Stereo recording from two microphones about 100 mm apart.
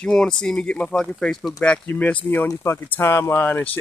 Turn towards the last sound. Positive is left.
turn(degrees=20)  # may be behind; listen again after turning